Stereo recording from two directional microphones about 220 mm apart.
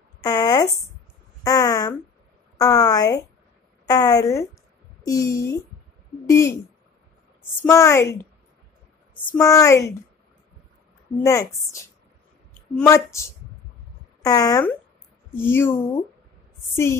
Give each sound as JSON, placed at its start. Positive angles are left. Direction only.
{"t": 0.2, "sound": "speech", "side_deg": 15}
{"t": 1.4, "sound": "a sound", "side_deg": 15}
{"t": 2.5, "sound": "a woman's voice", "side_deg": 15}
{"t": 7.6, "sound": "a woman's voice", "side_deg": 10}
{"t": 9.4, "sound": "a woman's voice", "side_deg": 15}
{"t": 11.2, "sound": "a woman's voice", "side_deg": 15}